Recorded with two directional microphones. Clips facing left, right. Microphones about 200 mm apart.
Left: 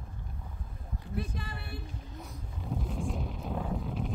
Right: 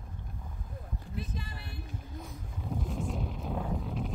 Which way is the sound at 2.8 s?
Centre (ahead or behind).